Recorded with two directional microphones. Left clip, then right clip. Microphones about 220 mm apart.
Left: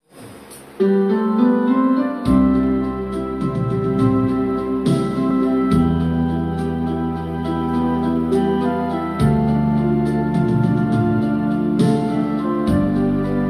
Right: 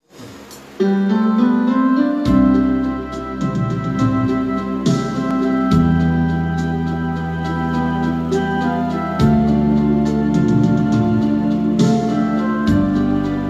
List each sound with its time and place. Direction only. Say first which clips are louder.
0.7 s music: left 1 dB; 40° right (ahead or behind)
10.3 s music: right 3 dB; 40° right (ahead or behind)